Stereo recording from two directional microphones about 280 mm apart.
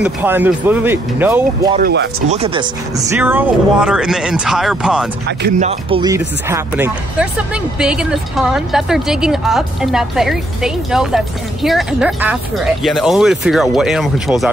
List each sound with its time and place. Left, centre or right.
0.0 s speech: centre
1.8 s speech: right
2.3 s speech: centre
3.2 s speech: centre
5.6 s speech: right; by 14.5 s centre